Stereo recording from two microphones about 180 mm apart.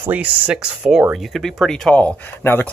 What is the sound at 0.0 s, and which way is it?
Speech, 10° right (ahead or behind).